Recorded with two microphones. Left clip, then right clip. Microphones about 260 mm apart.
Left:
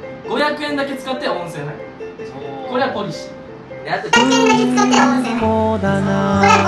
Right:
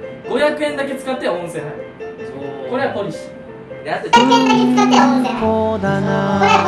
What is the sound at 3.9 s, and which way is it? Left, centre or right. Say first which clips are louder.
Speech: right 2 dB; centre.